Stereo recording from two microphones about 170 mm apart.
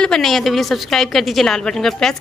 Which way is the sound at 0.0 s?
5° left (ahead or behind).